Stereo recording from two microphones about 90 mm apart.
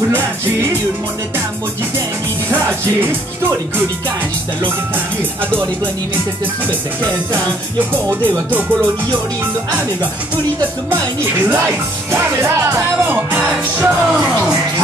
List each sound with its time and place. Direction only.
2.5 s music: 25° right (ahead or behind)
8.1 s music: 20° right (ahead or behind)
11.6 s speech: 30° right (ahead or behind)
13.0 s music: 20° right (ahead or behind)